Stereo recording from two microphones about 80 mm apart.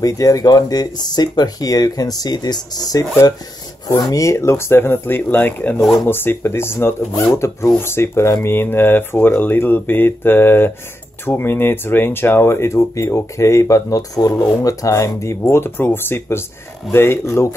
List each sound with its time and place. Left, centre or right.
0.0 s speech: left